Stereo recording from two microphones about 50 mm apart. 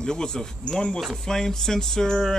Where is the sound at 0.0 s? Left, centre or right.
Centre.